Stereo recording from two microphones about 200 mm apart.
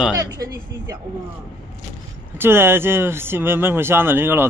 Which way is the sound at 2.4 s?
10° right (ahead or behind).